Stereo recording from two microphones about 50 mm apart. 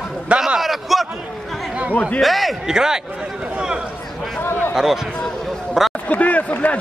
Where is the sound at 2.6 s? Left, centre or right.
Centre.